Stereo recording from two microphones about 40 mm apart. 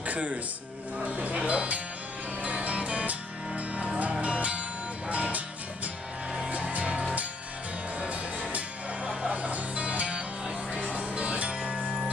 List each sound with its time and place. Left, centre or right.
0.0 s music: right
1.5 s speech: right
2.4 s music: right
6.5 s music: right